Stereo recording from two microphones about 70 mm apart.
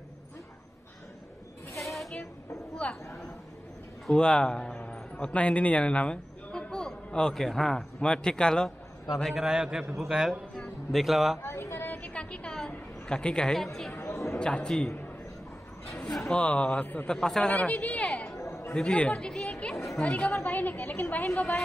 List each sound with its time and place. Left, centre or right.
1.8 s a sound: centre
2.8 s speech: centre
4.1 s a man's voice: centre
9.2 s a man's voice: centre
11.4 s a sound: left
12.0 s a sound: centre
13.9 s chatter: left
14.2 s a man's voice: centre
16.3 s speech: centre
17.1 s speech: centre
17.5 s chatter: centre
18.4 s chatter: left
18.7 s chatter: centre
20.3 s a sound: left